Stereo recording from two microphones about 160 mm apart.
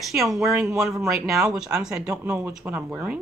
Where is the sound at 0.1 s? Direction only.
Centre (ahead or behind).